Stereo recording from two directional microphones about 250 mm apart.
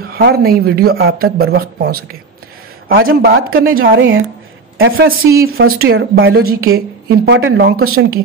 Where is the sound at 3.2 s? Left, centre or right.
Right.